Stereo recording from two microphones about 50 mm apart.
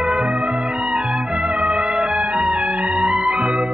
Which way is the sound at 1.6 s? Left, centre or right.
Centre.